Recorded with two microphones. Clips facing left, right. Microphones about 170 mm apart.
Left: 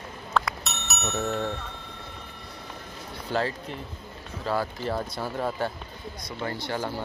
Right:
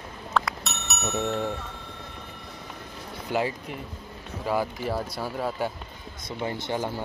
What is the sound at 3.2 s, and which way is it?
Speech, 15° right (ahead or behind).